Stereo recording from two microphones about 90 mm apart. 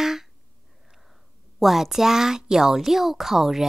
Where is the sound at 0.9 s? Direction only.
Centre (ahead or behind).